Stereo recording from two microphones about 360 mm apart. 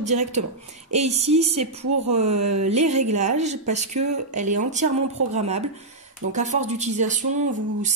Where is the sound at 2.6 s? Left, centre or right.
Centre.